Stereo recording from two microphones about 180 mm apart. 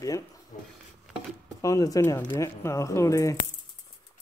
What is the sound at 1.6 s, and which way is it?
Speech, 20° left (ahead or behind).